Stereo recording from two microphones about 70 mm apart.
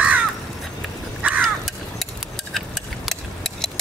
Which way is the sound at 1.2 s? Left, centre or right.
Right.